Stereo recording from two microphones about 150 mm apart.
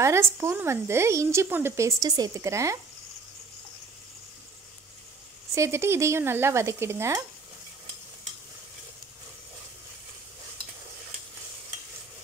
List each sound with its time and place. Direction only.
0.0 s speech: 20° right (ahead or behind)
5.5 s speech: 20° right (ahead or behind)